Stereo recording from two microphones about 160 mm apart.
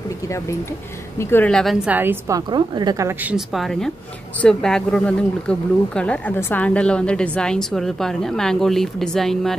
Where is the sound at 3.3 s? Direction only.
Centre (ahead or behind).